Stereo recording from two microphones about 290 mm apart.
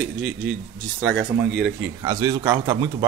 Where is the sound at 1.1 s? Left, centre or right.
Right.